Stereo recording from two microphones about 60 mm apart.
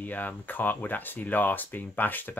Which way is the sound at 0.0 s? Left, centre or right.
Left.